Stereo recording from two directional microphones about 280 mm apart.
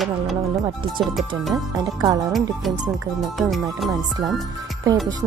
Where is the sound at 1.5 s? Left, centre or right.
Centre.